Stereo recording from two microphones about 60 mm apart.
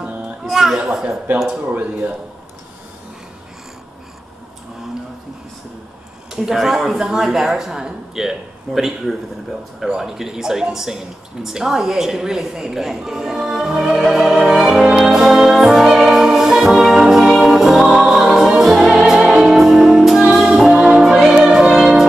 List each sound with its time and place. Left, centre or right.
0.4 s music: centre
1.6 s speech: right
6.3 s speech: centre
11.4 s a sound: centre
17.9 s music: centre